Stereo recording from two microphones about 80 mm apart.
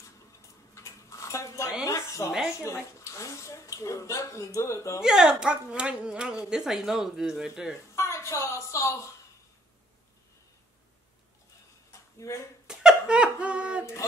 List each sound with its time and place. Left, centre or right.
0.7 s a sound: left
3.0 s speech: left
5.0 s speech: centre
7.9 s a woman's voice: left
12.2 s speech: left
12.6 s a sound: centre